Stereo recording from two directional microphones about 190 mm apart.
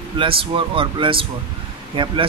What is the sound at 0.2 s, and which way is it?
Speech, 25° right (ahead or behind).